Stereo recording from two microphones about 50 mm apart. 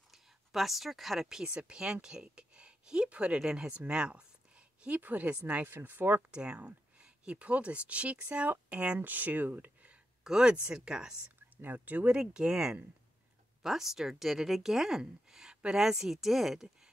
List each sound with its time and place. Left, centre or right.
0.1 s speech: centre
1.3 s speech: centre
4.8 s speech: right
5.7 s speech: right
6.3 s speech: right
9.0 s speech: right
10.2 s speech: centre
11.5 s speech: right
12.2 s speech: centre